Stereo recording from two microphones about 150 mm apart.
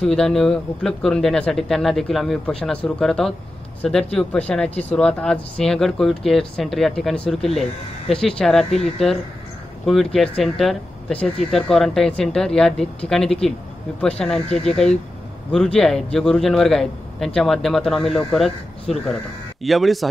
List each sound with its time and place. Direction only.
0.0 s speech: 5° left (ahead or behind)
4.6 s speech: 45° left (ahead or behind)
4.9 s a woman's voice: 5° left (ahead or behind)